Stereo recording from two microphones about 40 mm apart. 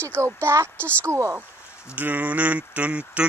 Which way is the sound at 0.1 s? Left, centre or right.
Right.